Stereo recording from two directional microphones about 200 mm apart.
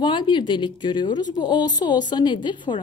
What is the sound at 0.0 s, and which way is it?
Speech, 25° left (ahead or behind).